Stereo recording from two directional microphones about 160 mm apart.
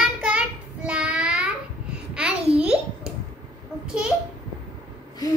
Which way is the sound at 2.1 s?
5° right (ahead or behind).